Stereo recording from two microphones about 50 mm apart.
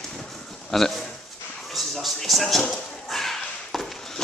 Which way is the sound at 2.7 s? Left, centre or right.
Centre.